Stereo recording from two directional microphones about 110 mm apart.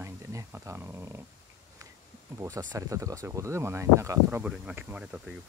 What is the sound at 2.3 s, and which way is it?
Speech, 25° right (ahead or behind).